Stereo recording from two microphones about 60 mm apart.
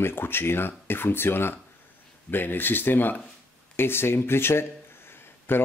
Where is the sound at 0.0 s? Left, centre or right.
Left.